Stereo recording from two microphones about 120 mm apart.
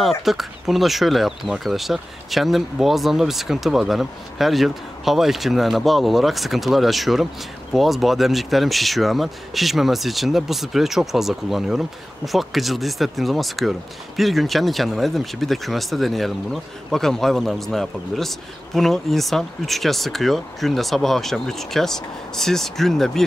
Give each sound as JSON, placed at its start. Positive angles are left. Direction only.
{"t": 0.0, "sound": "speech", "side_deg": 0}